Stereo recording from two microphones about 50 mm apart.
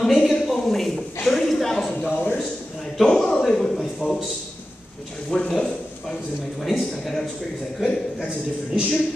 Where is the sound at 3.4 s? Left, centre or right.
Centre.